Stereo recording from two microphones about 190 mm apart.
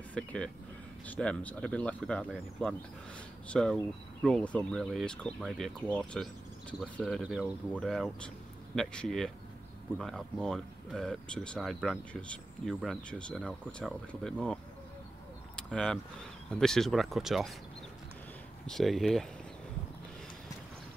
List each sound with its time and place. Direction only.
0.1 s speech: 5° left (ahead or behind)
18.7 s speech: centre (ahead or behind)